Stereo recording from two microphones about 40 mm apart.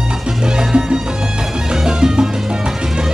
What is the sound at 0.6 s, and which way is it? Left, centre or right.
Music, centre.